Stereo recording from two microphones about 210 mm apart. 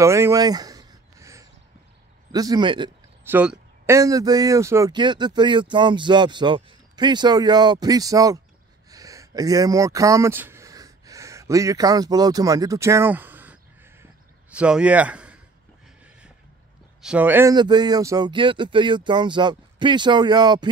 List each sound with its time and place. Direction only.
0.0 s a sound: 15° right (ahead or behind)
2.3 s speech: 20° right (ahead or behind)
3.3 s speech: 10° right (ahead or behind)
8.9 s a sound: 15° right (ahead or behind)
14.5 s a man's voice: 5° right (ahead or behind)
17.0 s speech: 5° right (ahead or behind)